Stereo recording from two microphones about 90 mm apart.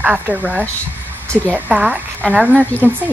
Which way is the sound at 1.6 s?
15° right (ahead or behind).